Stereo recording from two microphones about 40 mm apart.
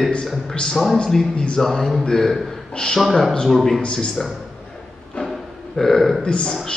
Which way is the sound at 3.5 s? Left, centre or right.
Centre.